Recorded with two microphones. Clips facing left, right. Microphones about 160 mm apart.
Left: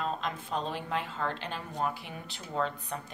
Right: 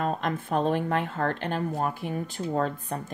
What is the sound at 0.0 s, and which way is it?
Speech, 55° right (ahead or behind).